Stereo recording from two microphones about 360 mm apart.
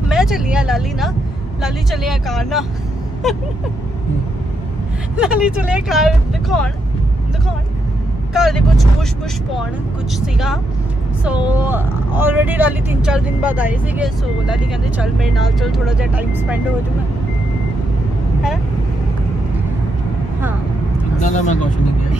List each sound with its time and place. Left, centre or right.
0.1 s speech: centre
5.1 s speech: centre
8.3 s speech: centre
10.2 s speech: centre
21.2 s speech: centre